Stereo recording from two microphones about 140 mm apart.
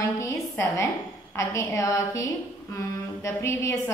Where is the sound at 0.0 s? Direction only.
20° left (ahead or behind).